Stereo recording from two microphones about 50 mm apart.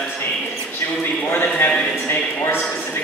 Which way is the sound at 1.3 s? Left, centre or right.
Left.